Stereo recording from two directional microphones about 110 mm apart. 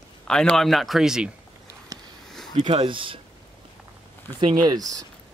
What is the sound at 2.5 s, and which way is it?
Speech, 50° right (ahead or behind).